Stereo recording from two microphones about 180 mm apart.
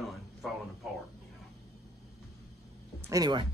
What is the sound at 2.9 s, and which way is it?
Speech, 20° right (ahead or behind).